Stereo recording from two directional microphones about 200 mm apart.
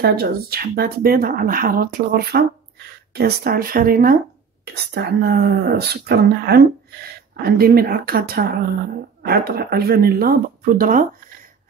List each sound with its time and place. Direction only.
0.0 s speech: 50° right (ahead or behind)